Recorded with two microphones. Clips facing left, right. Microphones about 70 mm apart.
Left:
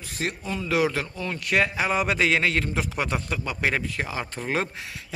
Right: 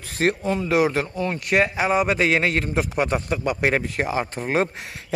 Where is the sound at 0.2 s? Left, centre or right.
Right.